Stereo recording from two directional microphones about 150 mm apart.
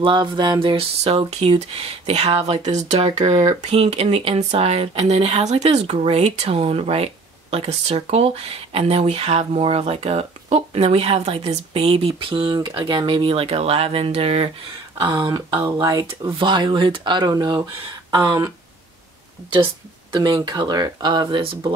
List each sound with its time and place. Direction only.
0.0 s speech: 30° right (ahead or behind)
15.0 s speech: 30° right (ahead or behind)
19.5 s speech: 30° right (ahead or behind)